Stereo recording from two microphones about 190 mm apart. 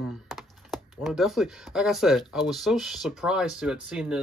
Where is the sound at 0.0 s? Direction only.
Centre (ahead or behind).